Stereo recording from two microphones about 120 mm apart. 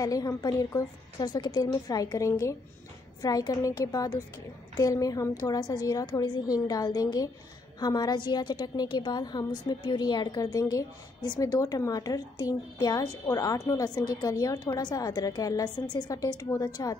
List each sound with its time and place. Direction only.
0.0 s a woman's voice: 30° left (ahead or behind)